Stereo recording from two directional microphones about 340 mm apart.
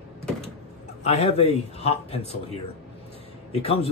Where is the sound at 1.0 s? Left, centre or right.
Centre.